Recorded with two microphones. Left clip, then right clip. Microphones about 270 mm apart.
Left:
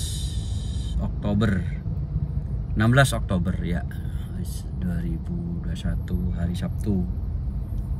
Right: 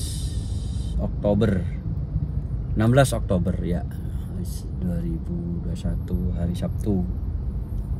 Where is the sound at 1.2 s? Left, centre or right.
Centre.